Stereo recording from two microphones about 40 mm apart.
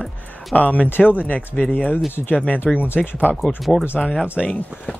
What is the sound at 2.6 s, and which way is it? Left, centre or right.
Speech, left.